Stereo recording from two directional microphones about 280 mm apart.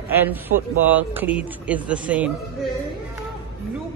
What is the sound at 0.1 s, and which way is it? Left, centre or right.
A woman's voice, centre.